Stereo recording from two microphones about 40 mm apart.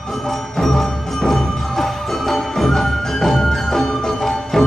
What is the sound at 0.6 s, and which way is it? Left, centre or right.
Music, centre.